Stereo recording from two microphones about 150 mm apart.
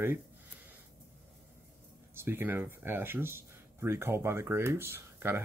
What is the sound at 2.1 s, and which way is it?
Speech, 15° right (ahead or behind).